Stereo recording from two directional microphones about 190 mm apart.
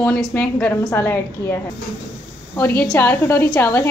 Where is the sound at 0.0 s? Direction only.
10° left (ahead or behind).